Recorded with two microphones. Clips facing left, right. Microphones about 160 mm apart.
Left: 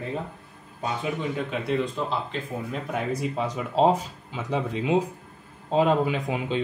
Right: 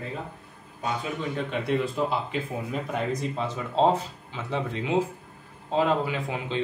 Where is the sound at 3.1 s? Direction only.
10° left (ahead or behind).